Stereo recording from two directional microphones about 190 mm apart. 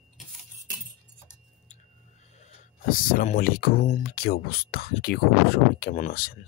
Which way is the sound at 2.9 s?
50° left (ahead or behind).